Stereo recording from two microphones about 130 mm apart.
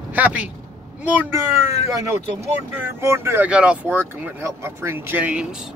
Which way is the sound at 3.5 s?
10° right (ahead or behind).